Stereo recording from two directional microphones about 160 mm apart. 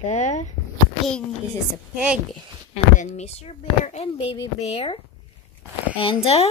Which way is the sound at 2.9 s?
45° left (ahead or behind).